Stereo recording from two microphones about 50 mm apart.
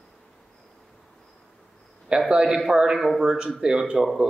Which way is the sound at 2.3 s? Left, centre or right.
Centre.